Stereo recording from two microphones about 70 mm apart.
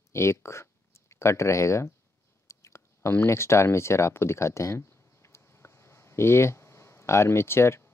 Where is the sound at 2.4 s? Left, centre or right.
Left.